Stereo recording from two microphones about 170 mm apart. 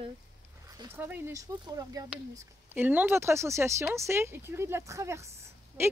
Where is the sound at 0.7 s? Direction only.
15° right (ahead or behind).